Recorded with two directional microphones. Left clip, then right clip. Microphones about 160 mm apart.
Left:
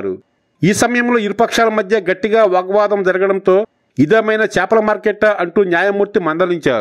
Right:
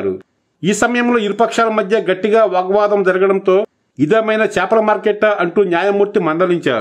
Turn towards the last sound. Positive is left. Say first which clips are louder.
# even
turn(degrees=40)  # may be behind; listen again after turning